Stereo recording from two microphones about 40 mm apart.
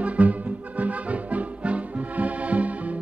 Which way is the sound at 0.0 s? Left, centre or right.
Right.